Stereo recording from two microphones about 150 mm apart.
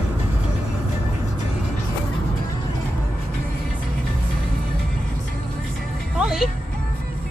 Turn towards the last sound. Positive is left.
turn(degrees=-5)  # may be behind; listen again after turning